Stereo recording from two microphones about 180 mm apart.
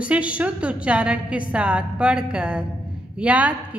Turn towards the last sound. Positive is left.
turn(degrees=-5)  # may be behind; listen again after turning